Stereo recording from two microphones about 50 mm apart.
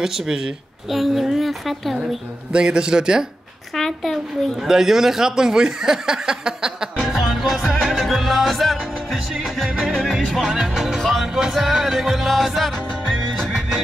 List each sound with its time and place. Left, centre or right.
0.0 s speech: centre
2.5 s speech: centre
3.7 s speech: centre
4.6 s speech: centre
7.1 s music: centre
9.7 s music: centre
9.9 s music: centre